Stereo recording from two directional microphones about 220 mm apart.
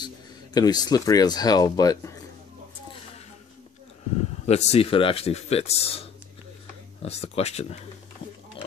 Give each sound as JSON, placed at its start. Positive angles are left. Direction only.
{"t": 0.6, "sound": "speech", "side_deg": 20}
{"t": 4.5, "sound": "speech", "side_deg": 30}